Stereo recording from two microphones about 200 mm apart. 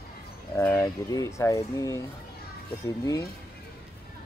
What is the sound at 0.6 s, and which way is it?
Speech, 15° left (ahead or behind).